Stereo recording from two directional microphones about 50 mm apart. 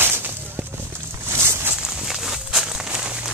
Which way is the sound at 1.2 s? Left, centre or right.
Right.